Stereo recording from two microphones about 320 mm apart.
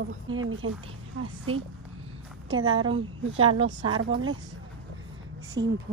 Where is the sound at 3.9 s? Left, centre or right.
Right.